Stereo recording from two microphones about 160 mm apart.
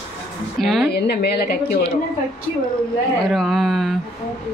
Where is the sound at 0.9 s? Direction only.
90° left.